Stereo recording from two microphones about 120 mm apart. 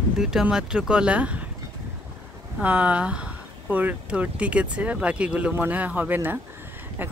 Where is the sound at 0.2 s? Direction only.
5° right (ahead or behind).